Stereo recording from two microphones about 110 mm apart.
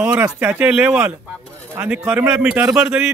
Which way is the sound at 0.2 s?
20° right (ahead or behind).